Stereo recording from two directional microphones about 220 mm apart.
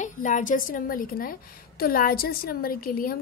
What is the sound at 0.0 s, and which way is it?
A woman's voice, 35° left (ahead or behind).